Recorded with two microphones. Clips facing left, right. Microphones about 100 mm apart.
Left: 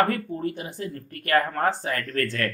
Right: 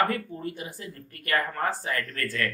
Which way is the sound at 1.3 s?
45° left (ahead or behind).